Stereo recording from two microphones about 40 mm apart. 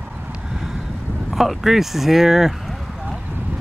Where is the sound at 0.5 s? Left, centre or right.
Centre.